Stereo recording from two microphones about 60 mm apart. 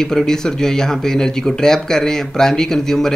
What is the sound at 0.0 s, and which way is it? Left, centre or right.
Speech, centre.